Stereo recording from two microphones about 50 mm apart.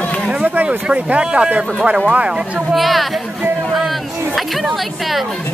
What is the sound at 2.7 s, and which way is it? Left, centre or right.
Speech, centre.